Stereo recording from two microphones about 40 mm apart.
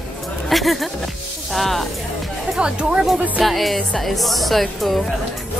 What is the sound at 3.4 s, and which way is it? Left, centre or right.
Speech, centre.